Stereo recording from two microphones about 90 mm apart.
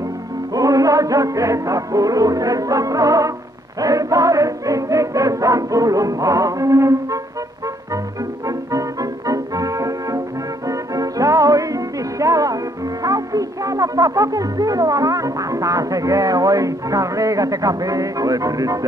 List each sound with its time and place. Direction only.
0.6 s music: 40° right (ahead or behind)
9.3 s music: 40° right (ahead or behind)